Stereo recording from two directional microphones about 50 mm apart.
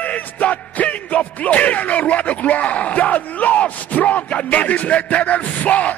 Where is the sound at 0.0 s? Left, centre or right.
Left.